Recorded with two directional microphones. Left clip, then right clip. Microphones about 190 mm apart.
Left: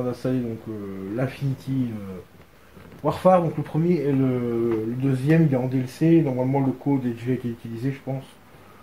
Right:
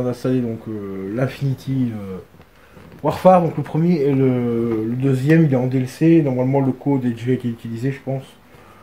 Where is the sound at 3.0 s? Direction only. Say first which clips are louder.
Right 5 dB; 50° right (ahead or behind).